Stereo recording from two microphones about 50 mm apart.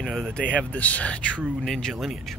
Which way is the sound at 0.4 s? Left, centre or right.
Left.